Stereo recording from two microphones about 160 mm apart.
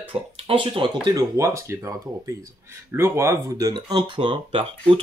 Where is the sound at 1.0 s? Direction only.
20° right (ahead or behind).